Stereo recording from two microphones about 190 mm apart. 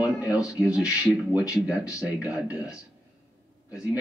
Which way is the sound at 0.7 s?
5° right (ahead or behind).